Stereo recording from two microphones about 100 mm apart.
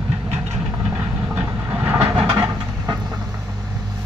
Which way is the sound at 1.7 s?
20° right (ahead or behind).